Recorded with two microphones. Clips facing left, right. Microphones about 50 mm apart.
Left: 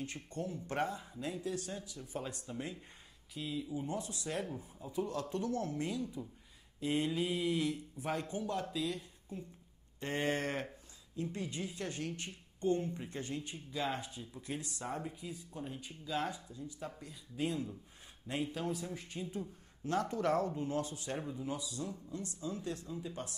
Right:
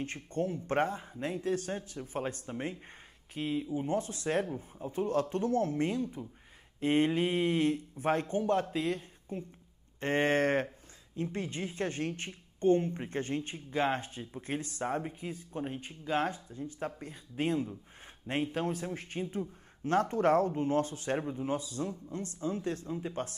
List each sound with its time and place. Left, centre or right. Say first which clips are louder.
0.0 s speech: right 7 dB; right